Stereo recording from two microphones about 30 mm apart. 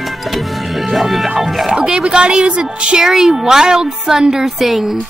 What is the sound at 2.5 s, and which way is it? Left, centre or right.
Music, right.